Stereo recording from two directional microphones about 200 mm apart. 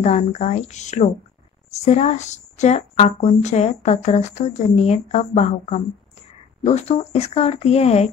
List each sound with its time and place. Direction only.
0.0 s speech: 35° left (ahead or behind)